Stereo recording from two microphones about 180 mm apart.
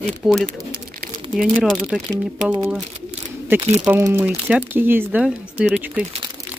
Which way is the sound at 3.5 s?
10° right (ahead or behind).